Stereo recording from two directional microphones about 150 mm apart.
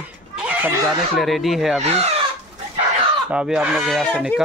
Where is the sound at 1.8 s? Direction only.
45° right (ahead or behind).